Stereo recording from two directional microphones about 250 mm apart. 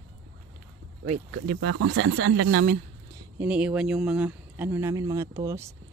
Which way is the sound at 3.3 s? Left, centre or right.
Centre.